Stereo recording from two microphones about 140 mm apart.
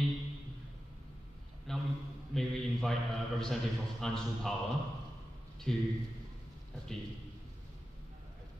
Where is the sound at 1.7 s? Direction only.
5° left (ahead or behind).